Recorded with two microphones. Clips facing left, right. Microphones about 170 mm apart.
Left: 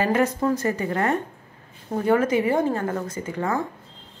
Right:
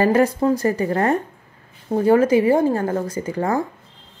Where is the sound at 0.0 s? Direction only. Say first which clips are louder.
Right 5 dB; 35° right (ahead or behind).